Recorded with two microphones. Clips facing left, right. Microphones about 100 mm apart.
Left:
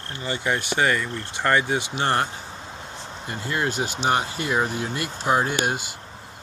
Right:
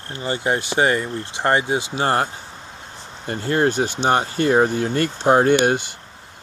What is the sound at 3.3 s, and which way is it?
Speech, 40° right (ahead or behind).